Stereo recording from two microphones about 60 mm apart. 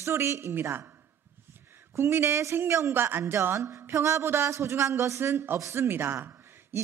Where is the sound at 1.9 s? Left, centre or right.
Right.